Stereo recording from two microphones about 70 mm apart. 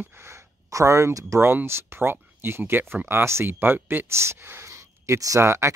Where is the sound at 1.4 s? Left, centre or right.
Right.